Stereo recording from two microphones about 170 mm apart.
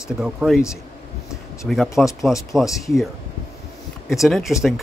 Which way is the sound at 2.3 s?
20° left (ahead or behind).